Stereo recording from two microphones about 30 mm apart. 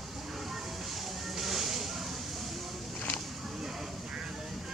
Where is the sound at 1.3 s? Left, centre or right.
Centre.